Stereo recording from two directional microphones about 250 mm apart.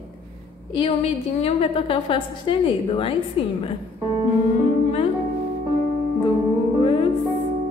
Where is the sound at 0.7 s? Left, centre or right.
Left.